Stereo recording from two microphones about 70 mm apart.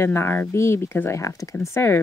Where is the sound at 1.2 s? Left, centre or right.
Left.